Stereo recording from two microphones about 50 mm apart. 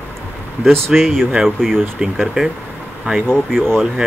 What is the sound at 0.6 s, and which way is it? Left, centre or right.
Speech, centre.